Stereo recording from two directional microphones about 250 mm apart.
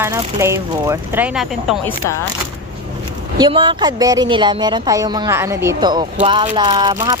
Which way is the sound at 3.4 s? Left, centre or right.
Centre.